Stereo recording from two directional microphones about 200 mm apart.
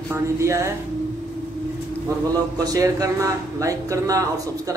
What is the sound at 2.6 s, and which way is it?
Speech, 20° right (ahead or behind).